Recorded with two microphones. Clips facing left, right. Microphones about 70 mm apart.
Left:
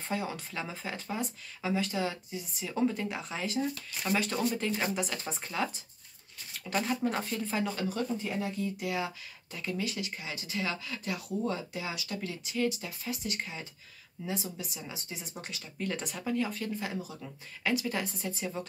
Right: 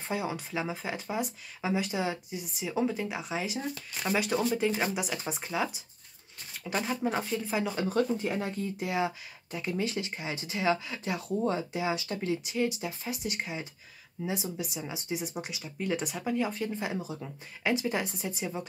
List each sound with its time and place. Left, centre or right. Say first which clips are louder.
0.1 s speech: right 3 dB; centre
7.9 s speech: right 5 dB; right
8.5 s speech: right 2 dB; right